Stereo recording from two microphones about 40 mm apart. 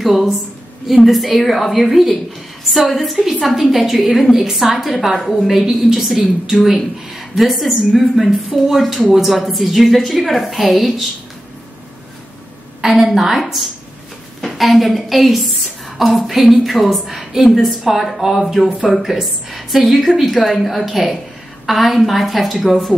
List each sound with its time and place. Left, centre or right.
0.0 s a woman's voice: centre
5.5 s a woman's voice: centre
12.8 s a woman's voice: centre
17.0 s a woman's voice: centre